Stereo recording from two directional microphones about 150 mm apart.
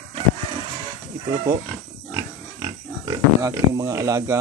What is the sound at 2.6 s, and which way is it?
Speech, 25° right (ahead or behind).